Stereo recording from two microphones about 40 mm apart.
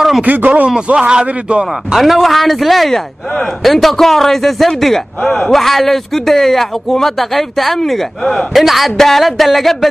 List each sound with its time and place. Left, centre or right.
0.2 s speech: right
0.9 s a man's voice: right
2.0 s a man's voice: centre
8.5 s a man's voice: centre